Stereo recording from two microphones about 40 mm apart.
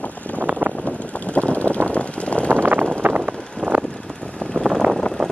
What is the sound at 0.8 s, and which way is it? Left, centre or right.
Vehicle, left.